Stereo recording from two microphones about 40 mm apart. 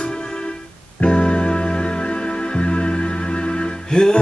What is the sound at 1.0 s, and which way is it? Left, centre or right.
Music, left.